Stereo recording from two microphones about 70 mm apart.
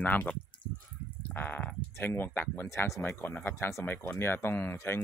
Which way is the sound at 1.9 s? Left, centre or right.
Left.